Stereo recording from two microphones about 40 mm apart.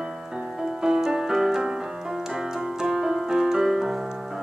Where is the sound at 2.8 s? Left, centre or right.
Centre.